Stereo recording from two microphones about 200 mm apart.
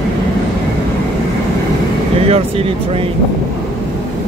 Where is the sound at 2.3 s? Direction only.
30° right (ahead or behind).